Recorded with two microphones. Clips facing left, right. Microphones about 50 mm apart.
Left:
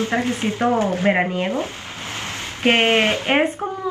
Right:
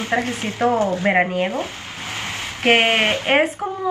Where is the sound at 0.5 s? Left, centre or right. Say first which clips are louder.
Right 1 dB; right.